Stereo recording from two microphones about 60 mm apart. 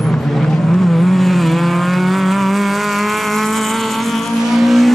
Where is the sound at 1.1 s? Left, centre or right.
Centre.